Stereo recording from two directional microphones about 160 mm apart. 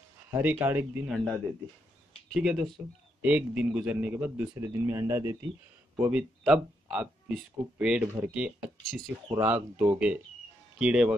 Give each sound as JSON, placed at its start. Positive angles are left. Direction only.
{"t": 0.3, "sound": "a man's voice", "side_deg": -10}
{"t": 2.3, "sound": "a man's voice", "side_deg": 0}